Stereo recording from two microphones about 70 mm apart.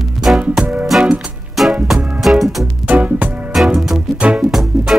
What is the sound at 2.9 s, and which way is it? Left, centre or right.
Music, centre.